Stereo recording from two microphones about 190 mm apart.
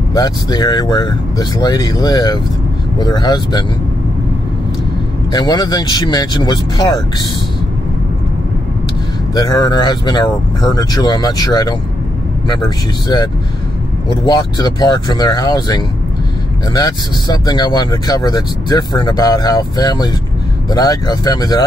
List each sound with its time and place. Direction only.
0.1 s speech: 20° left (ahead or behind)
5.3 s speech: 20° left (ahead or behind)
9.3 s speech: 20° left (ahead or behind)